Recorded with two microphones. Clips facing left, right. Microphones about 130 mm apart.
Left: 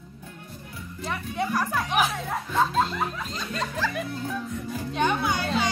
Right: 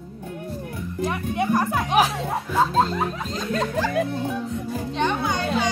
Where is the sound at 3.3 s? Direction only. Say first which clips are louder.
Right 9 dB; 45° right (ahead or behind).